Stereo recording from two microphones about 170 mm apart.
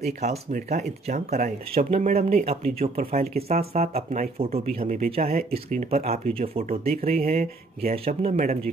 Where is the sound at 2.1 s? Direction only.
60° right (ahead or behind).